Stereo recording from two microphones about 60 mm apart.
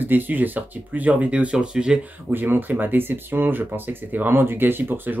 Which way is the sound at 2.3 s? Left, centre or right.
Right.